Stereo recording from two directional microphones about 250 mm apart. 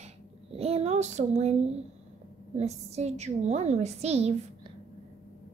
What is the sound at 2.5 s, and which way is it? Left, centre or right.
A woman's voice, right.